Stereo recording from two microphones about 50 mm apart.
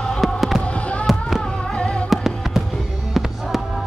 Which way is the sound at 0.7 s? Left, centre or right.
Left.